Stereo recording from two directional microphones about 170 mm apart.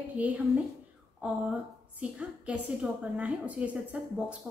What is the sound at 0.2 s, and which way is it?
A woman's voice, 10° right (ahead or behind).